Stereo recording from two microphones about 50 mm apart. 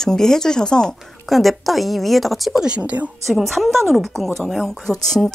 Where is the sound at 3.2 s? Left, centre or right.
Centre.